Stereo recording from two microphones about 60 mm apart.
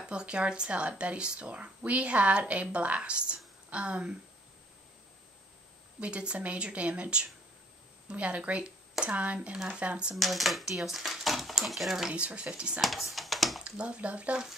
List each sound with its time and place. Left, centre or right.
0.0 s speech: centre
5.9 s speech: centre
10.1 s speech: centre
12.1 s speech: centre
12.8 s speech: centre
13.7 s speech: centre